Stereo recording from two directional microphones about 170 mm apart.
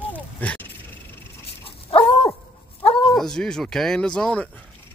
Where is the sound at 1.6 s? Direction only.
35° left (ahead or behind).